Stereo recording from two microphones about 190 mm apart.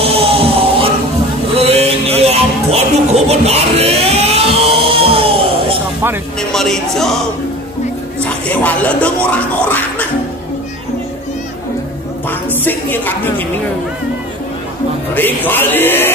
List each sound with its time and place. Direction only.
0.0 s music: 30° right (ahead or behind)
3.3 s a sound: 35° right (ahead or behind)
6.5 s speech: centre (ahead or behind)
8.2 s speech: 5° left (ahead or behind)
12.3 s speech: 10° left (ahead or behind)
15.1 s a sound: 10° left (ahead or behind)